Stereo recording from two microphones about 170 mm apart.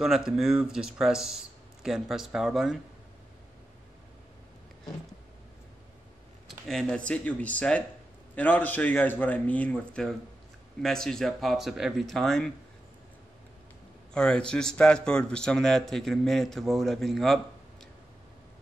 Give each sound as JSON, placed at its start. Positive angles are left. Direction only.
{"t": 0.0, "sound": "a man's voice", "side_deg": 0}
{"t": 6.7, "sound": "a man's voice", "side_deg": 5}
{"t": 14.1, "sound": "a man's voice", "side_deg": 5}